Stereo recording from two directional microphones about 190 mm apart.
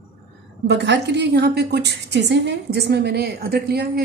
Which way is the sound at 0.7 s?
65° right (ahead or behind).